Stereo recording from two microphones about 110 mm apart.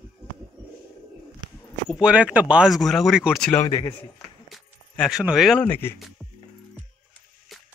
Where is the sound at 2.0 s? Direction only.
10° right (ahead or behind).